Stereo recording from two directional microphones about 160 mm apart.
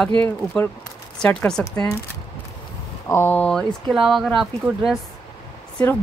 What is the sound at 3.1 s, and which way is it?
Speech, 10° left (ahead or behind).